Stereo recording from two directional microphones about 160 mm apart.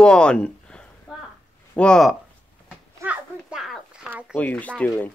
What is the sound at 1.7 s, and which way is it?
Speech, 5° left (ahead or behind).